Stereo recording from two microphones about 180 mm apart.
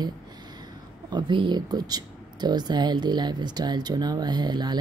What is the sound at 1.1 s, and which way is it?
Speech, 25° right (ahead or behind).